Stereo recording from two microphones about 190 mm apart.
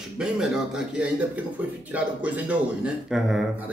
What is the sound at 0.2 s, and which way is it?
Speech, 5° right (ahead or behind).